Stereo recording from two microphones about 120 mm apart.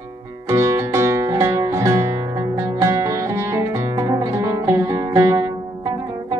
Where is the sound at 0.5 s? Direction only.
30° right (ahead or behind).